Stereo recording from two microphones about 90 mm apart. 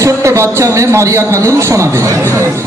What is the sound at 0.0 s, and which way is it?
A man's voice, 35° right (ahead or behind).